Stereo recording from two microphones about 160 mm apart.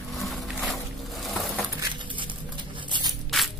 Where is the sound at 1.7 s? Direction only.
30° right (ahead or behind).